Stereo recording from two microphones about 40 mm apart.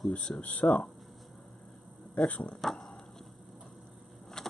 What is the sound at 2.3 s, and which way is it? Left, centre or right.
Speech, left.